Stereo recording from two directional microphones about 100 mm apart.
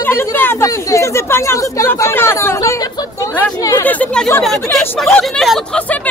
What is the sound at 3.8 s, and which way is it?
Speech, 15° left (ahead or behind).